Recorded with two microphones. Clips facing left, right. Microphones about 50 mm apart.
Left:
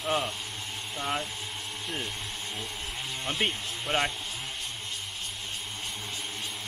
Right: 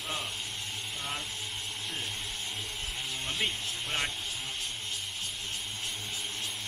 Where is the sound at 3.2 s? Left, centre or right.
Left.